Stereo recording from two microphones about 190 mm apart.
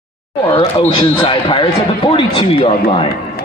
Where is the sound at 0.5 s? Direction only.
30° left (ahead or behind).